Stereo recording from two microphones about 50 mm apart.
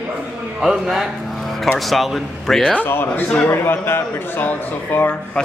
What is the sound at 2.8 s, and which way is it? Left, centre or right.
A man's voice, left.